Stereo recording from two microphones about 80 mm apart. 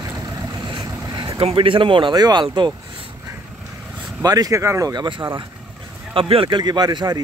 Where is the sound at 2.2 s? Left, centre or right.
Right.